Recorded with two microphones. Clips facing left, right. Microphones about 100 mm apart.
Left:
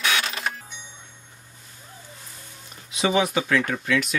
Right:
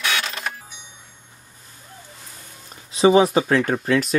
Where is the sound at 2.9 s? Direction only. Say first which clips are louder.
Right 7 dB; 35° right (ahead or behind).